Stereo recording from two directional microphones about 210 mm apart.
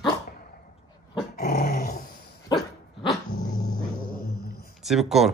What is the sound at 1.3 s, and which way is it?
Dog, 45° left (ahead or behind).